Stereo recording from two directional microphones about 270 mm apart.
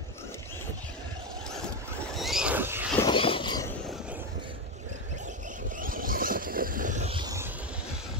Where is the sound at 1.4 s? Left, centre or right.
Centre.